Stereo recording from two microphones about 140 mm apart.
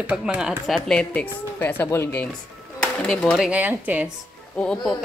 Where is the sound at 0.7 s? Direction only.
5° left (ahead or behind).